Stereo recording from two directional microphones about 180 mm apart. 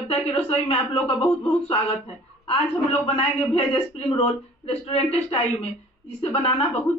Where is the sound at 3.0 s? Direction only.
35° left (ahead or behind).